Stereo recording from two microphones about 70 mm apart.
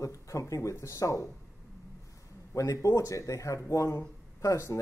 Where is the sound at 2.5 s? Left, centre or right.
Left.